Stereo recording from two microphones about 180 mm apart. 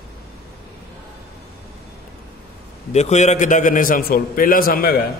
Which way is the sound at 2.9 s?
40° left (ahead or behind).